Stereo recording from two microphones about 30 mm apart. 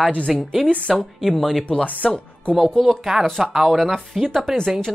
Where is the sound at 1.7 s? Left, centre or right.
Left.